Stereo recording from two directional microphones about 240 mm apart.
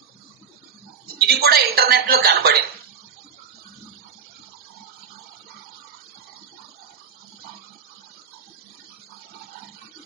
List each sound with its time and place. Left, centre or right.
1.1 s speech: right